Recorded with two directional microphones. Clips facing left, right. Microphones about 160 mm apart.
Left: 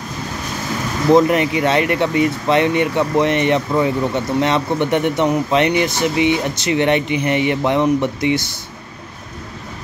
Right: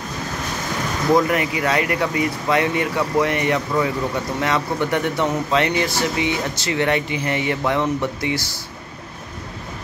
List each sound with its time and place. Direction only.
1.1 s speech: 25° left (ahead or behind)